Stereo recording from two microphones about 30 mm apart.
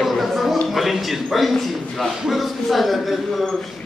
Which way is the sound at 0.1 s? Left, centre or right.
Centre.